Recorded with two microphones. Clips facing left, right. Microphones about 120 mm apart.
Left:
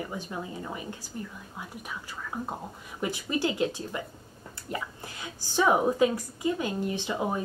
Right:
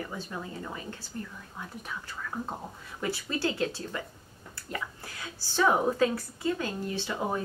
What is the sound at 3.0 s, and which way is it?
A woman's voice, 15° left (ahead or behind).